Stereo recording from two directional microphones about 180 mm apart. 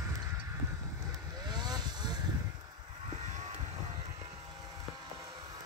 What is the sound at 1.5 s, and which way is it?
Vehicle, 25° right (ahead or behind).